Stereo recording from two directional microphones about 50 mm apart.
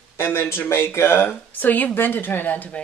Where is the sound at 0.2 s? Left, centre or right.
Left.